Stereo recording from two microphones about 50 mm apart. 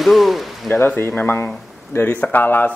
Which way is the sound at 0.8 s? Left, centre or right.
Left.